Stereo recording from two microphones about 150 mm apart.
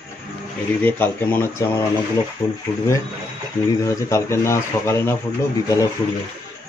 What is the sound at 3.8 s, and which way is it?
Speech, 20° left (ahead or behind).